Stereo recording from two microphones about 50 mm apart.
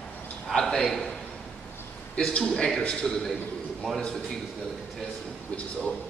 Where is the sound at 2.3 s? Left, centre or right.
Centre.